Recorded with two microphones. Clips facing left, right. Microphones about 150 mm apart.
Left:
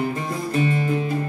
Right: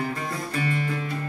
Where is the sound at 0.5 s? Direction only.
25° left (ahead or behind).